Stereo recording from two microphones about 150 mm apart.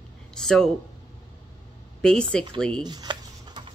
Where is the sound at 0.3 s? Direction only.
5° left (ahead or behind).